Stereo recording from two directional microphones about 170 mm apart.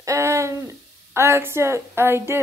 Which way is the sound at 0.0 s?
15° right (ahead or behind).